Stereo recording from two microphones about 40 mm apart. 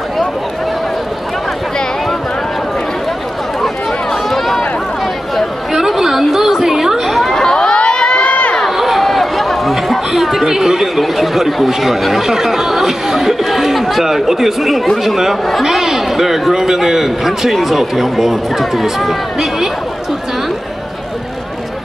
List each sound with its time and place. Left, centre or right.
3.6 s run: centre
5.7 s chatter: centre
7.3 s crowd: centre; by 8.5 s left
8.6 s a sound: centre
15.6 s a man's voice: centre